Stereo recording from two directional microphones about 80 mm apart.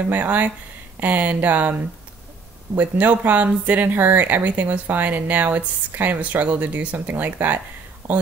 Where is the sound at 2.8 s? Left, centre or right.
Centre.